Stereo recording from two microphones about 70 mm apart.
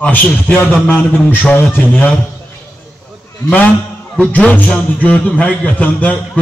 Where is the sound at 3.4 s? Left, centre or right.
Left.